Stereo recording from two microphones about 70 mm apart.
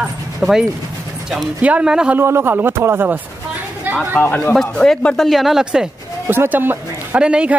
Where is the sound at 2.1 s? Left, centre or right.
Right.